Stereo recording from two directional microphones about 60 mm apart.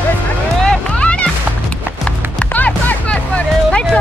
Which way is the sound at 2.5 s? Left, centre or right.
Left.